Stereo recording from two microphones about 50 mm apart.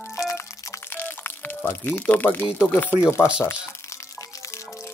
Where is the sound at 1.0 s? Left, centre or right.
Left.